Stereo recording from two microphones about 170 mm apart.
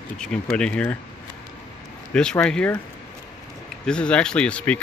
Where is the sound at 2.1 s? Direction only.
5° left (ahead or behind).